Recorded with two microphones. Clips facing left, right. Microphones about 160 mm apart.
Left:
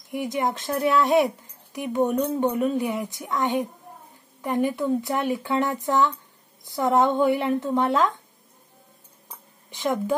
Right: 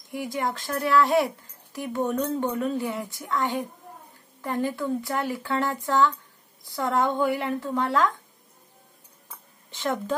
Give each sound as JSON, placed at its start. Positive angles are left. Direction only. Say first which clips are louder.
{"t": 0.1, "sound": "speech", "louder": "left 3 dB", "side_deg": 20}
{"t": 9.7, "sound": "a woman's voice", "louder": "left 3 dB", "side_deg": 15}